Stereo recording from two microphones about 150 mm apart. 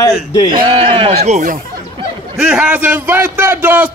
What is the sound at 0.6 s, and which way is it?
Speech, 35° right (ahead or behind).